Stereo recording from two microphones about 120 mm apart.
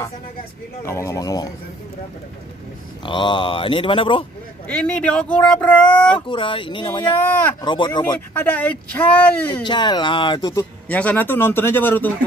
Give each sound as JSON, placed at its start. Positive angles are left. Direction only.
{"t": 0.8, "sound": "speech", "side_deg": 25}
{"t": 3.1, "sound": "speech", "side_deg": 40}
{"t": 4.6, "sound": "speech", "side_deg": 10}
{"t": 6.1, "sound": "speech", "side_deg": 45}
{"t": 7.2, "sound": "speech", "side_deg": 15}
{"t": 7.6, "sound": "speech", "side_deg": 40}
{"t": 8.4, "sound": "speech", "side_deg": 15}
{"t": 9.5, "sound": "speech", "side_deg": 40}
{"t": 10.5, "sound": "speech", "side_deg": 15}